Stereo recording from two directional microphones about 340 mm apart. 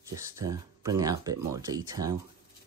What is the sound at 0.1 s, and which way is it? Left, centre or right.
Speech, centre.